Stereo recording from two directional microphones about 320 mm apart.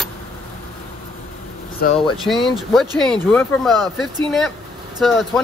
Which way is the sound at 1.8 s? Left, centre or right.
Left.